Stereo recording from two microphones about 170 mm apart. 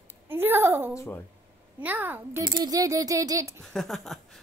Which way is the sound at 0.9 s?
15° left (ahead or behind).